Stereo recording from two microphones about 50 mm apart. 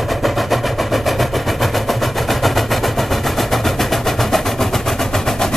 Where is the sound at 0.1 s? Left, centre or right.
Centre.